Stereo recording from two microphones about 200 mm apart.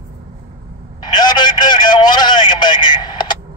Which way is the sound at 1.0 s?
20° left (ahead or behind).